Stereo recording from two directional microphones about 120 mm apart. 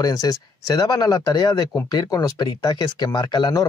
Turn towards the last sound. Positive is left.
turn(degrees=35)  # may be behind; listen again after turning